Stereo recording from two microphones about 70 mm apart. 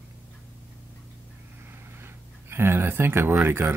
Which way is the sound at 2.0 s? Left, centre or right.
Right.